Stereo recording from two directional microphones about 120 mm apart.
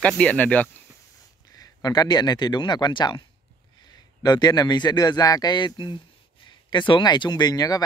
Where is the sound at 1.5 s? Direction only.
30° left (ahead or behind).